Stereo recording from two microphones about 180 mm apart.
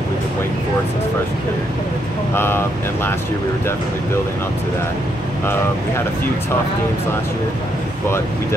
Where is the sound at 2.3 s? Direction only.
10° left (ahead or behind).